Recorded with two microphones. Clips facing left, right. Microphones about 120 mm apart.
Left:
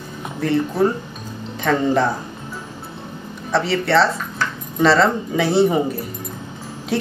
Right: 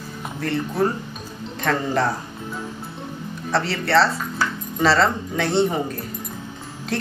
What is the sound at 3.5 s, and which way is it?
A woman's voice, centre (ahead or behind).